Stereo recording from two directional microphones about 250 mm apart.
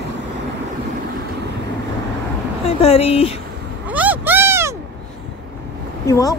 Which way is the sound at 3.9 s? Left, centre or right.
Centre.